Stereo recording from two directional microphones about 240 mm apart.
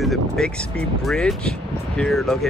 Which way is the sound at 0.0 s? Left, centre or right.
Centre.